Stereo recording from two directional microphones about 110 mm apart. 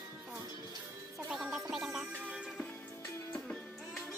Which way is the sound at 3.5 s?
5° left (ahead or behind).